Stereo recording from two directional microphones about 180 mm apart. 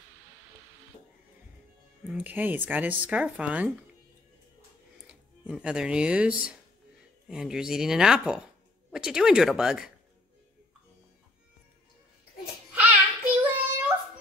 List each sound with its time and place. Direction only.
2.0 s speech: 10° right (ahead or behind)
5.0 s speech: 5° right (ahead or behind)
12.9 s child singing: 10° right (ahead or behind)